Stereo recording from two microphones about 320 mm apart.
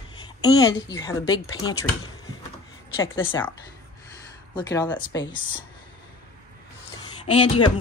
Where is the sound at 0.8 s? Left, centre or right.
Centre.